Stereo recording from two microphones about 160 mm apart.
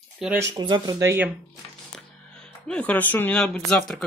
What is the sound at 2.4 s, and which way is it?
Speech, 5° left (ahead or behind).